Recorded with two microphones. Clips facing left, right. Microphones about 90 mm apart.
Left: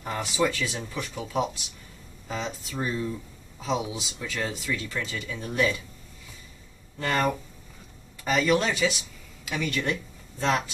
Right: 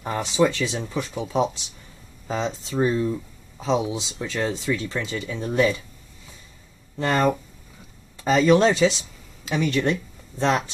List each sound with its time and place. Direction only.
0.0 s speech: 25° right (ahead or behind)
7.0 s speech: 30° right (ahead or behind)